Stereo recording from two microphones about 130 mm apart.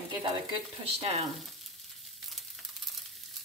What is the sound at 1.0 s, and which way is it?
Stir, 55° right (ahead or behind).